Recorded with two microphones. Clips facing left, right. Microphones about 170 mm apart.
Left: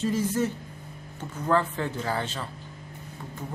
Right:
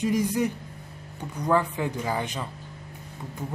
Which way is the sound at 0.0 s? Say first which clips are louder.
Right 1 dB; 15° right (ahead or behind).